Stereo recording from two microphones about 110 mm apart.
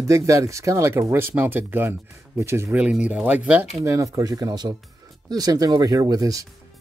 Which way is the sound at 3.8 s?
30° right (ahead or behind).